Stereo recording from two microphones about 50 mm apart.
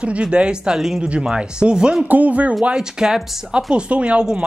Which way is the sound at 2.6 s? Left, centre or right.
Centre.